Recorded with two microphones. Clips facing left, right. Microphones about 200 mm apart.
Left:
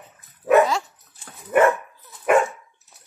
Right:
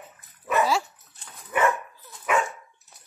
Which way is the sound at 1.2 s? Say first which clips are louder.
Left 7 dB; 50° left (ahead or behind).